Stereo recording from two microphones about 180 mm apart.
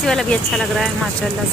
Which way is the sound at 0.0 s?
5° left (ahead or behind).